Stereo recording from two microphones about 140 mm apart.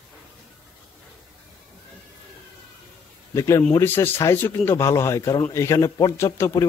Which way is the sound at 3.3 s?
20° left (ahead or behind).